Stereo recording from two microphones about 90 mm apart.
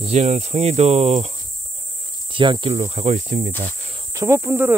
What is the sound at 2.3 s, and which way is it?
Speech, 65° right (ahead or behind).